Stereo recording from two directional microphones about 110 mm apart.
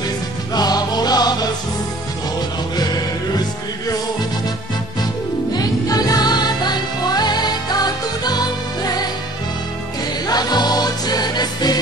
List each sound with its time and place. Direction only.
0.6 s music: 35° left (ahead or behind)
2.7 s music: 40° left (ahead or behind)
5.5 s music: 35° left (ahead or behind)
10.2 s music: 40° left (ahead or behind)